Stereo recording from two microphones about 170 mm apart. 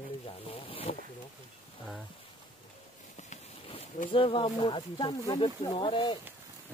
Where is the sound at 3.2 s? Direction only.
40° left (ahead or behind).